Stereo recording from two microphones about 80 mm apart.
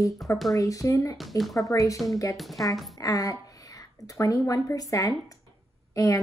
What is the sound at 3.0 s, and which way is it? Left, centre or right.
Speech, left.